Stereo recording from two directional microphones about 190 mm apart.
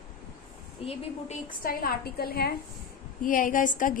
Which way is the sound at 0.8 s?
30° left (ahead or behind).